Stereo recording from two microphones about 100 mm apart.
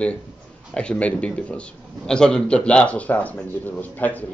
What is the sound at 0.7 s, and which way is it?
A man's voice, 10° left (ahead or behind).